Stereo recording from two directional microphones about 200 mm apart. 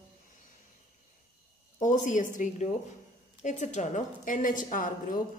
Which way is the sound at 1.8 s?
40° left (ahead or behind).